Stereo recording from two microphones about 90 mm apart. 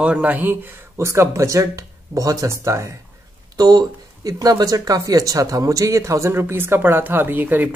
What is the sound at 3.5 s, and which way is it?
Speech, 45° right (ahead or behind).